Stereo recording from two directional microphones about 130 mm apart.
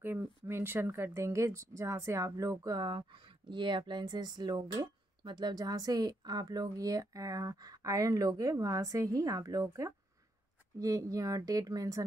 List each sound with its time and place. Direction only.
0.0 s speech: 15° right (ahead or behind)